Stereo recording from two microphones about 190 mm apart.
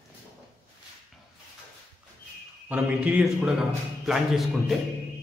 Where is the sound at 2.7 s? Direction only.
5° right (ahead or behind).